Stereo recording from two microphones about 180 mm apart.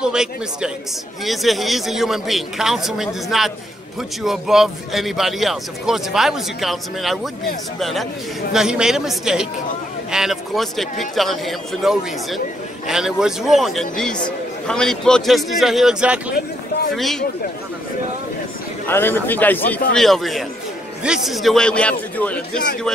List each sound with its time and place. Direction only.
0.0 s speech: 5° right (ahead or behind)
18.9 s a man's voice: 10° left (ahead or behind)